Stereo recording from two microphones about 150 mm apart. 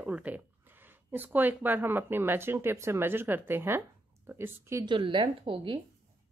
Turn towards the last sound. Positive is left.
turn(degrees=-35)  # may be behind; listen again after turning